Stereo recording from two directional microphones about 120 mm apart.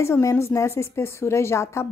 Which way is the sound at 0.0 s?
25° left (ahead or behind).